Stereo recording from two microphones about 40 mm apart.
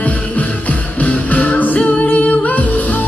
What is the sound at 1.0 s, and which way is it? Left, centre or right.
Music, left.